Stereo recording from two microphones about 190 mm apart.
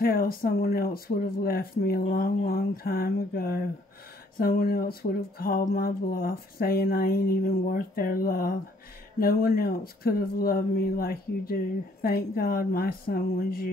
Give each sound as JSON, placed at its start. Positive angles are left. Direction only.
{"t": 0.0, "sound": "speech", "side_deg": 50}